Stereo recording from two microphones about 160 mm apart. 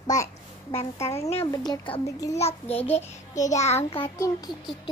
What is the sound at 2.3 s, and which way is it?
A child's voice, 40° left (ahead or behind).